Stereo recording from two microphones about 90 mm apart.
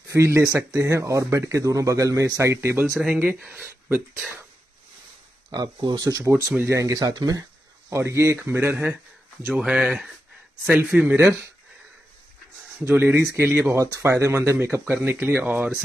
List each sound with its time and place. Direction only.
0.1 s speech: 30° right (ahead or behind)
3.1 s speech: 15° right (ahead or behind)
5.5 s speech: 50° right (ahead or behind)
6.9 s speech: 50° right (ahead or behind)
7.9 s speech: 35° right (ahead or behind)
9.5 s speech: 5° right (ahead or behind)
10.6 s speech: 25° right (ahead or behind)
10.9 s speech: 10° right (ahead or behind)
11.1 s speech: 35° right (ahead or behind)
12.7 s speech: 20° right (ahead or behind)